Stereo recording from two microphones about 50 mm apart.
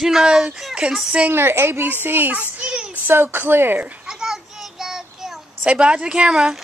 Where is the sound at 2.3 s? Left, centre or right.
Right.